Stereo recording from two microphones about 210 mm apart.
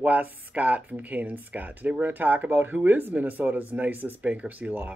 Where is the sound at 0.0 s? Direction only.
5° right (ahead or behind).